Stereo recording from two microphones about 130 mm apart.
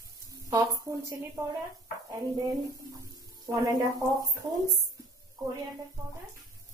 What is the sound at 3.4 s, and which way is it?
Speech, 25° right (ahead or behind).